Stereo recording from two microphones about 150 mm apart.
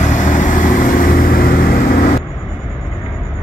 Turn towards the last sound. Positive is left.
turn(degrees=75)  # may be behind; listen again after turning